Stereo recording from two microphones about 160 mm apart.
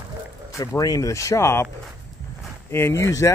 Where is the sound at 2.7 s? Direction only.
15° left (ahead or behind).